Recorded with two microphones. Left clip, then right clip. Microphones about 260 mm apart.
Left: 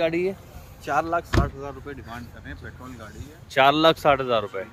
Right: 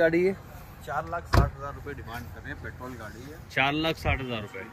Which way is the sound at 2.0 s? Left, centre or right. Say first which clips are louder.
Even; centre.